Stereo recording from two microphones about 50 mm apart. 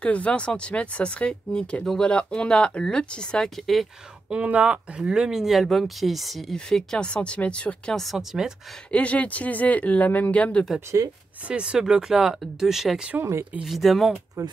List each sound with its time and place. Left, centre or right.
0.0 s speech: left; by 3.8 s centre
4.3 s speech: right; by 6.4 s centre
6.5 s speech: centre
7.9 s speech: centre
8.9 s speech: left
10.9 s speech: right
11.4 s speech: centre
13.2 s speech: right
13.7 s speech: centre